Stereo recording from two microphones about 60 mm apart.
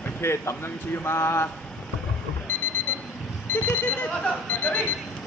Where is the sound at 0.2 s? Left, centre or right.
Left.